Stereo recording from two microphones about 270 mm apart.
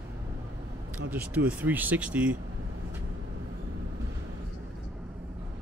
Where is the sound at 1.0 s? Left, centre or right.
Centre.